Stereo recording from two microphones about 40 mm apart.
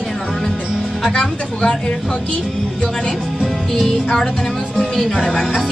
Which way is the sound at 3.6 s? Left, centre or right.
Centre.